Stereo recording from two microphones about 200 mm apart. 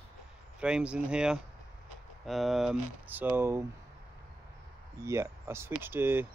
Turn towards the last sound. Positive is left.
turn(degrees=-10)  # may be behind; listen again after turning